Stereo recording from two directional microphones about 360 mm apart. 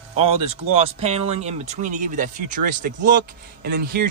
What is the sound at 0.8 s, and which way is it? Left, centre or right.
Speech, centre.